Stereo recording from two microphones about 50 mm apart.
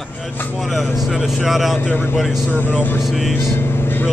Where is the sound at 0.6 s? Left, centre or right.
Centre.